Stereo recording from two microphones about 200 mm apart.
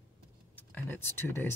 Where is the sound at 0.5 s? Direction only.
10° left (ahead or behind).